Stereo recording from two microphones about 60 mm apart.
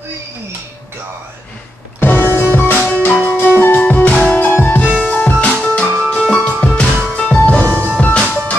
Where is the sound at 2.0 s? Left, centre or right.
Left.